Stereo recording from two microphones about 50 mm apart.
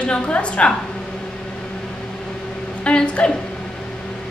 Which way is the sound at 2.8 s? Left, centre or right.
Left.